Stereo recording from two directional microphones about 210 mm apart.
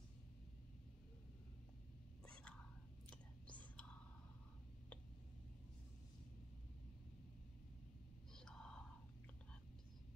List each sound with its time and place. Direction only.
2.2 s whispering: 5° left (ahead or behind)
8.4 s whispering: 5° left (ahead or behind)